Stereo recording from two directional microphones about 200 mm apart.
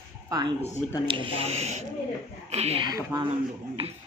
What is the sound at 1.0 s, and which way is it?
Speech, 25° right (ahead or behind).